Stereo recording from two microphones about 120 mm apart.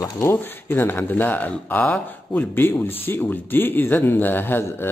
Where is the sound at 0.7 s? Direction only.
15° left (ahead or behind).